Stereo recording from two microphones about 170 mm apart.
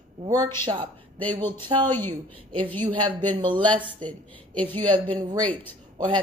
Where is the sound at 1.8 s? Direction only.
10° left (ahead or behind).